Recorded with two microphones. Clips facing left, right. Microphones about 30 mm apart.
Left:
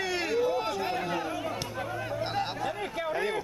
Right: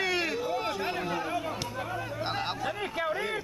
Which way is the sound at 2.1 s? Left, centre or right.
Centre.